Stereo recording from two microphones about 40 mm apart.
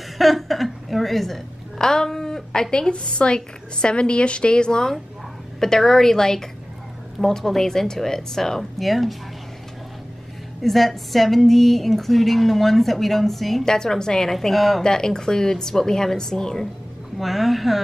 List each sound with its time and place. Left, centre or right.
0.2 s chuckle: centre
1.8 s a woman's voice: centre
10.6 s speech: centre
13.7 s speech: centre
14.3 s speech: centre
14.8 s speech: centre
17.2 s speech: centre